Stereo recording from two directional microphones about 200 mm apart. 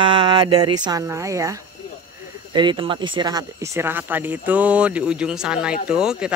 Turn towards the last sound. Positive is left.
turn(degrees=-5)  # may be behind; listen again after turning